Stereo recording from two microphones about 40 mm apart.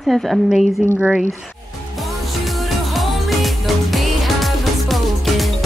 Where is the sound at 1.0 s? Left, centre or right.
Right.